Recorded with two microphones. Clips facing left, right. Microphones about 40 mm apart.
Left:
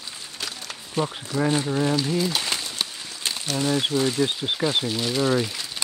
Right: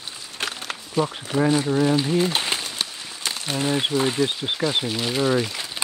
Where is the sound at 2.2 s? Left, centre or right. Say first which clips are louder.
Right 3 dB; right.